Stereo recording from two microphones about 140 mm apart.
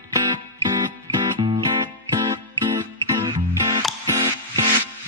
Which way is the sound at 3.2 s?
30° right (ahead or behind).